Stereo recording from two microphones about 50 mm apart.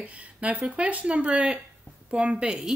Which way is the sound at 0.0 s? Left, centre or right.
Right.